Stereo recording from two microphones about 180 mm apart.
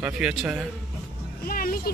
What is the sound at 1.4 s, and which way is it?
Music, 55° left (ahead or behind).